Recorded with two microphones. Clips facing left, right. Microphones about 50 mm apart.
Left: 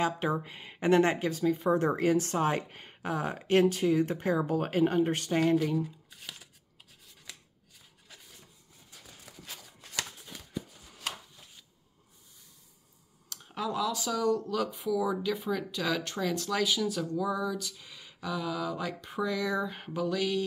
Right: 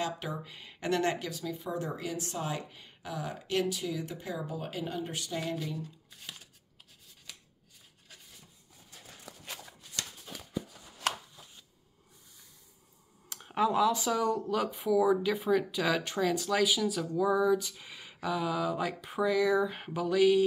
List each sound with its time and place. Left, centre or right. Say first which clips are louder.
0.0 s speech: left 6 dB; left
11.1 s shuffling cards: right 5 dB; right
13.3 s speech: right 6 dB; right